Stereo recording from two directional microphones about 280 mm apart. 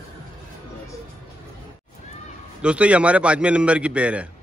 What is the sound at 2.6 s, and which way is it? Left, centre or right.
A man's voice, centre.